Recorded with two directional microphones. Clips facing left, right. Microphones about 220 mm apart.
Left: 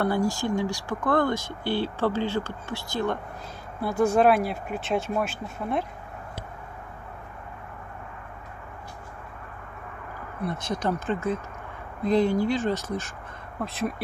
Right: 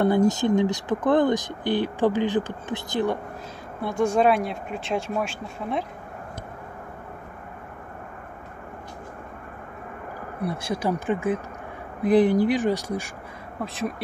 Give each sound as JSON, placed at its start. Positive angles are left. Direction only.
{"t": 0.0, "sound": "speech", "side_deg": -20}
{"t": 3.8, "sound": "speech", "side_deg": 5}
{"t": 10.5, "sound": "speech", "side_deg": -10}
{"t": 13.7, "sound": "speech", "side_deg": 0}